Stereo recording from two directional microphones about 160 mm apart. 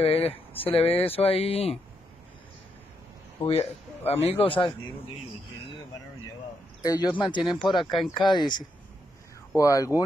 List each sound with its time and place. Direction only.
0.0 s speech: 40° left (ahead or behind)
0.5 s speech: 10° left (ahead or behind)
0.7 s a man's voice: 35° left (ahead or behind)
3.4 s a man's voice: 40° left (ahead or behind)
6.8 s speech: 25° left (ahead or behind)